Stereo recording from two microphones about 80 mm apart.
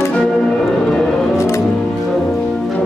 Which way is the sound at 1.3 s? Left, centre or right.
Left.